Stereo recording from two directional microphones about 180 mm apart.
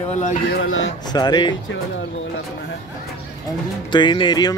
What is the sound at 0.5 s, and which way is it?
Speech, 90° left.